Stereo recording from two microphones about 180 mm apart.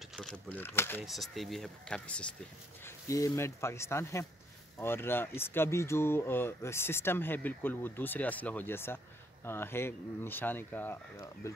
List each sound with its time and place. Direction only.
0.1 s speech: 5° left (ahead or behind)
1.0 s speech: centre (ahead or behind)
2.8 s speech: 15° left (ahead or behind)